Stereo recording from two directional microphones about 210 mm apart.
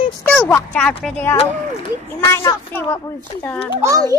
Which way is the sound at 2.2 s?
10° left (ahead or behind).